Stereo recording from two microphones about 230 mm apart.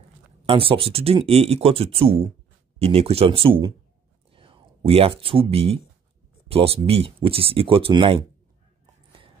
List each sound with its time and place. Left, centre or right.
0.5 s speech: right